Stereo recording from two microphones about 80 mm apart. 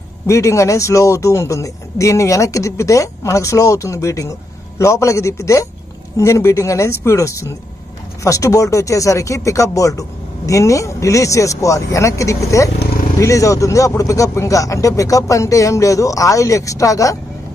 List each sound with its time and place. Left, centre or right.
0.3 s a man's voice: left